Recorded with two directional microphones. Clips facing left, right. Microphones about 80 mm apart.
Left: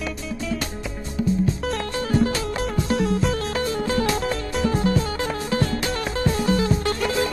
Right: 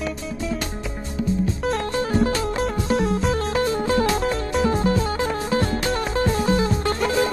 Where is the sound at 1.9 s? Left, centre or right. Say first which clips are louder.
Right 3 dB; right.